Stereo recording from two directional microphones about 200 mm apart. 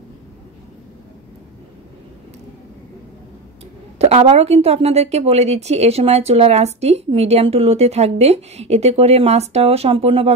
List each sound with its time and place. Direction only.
4.0 s a woman's voice: 30° right (ahead or behind)